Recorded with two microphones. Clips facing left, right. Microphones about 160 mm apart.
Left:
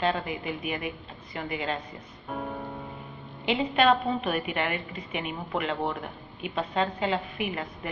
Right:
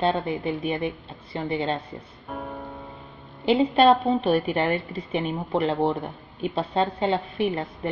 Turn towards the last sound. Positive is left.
turn(degrees=-35)  # may be behind; listen again after turning